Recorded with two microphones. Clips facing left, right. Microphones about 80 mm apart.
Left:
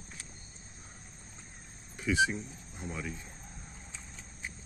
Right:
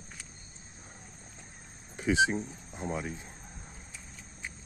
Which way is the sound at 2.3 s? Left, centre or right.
Right.